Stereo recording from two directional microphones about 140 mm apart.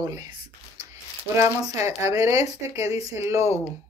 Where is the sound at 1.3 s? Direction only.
20° right (ahead or behind).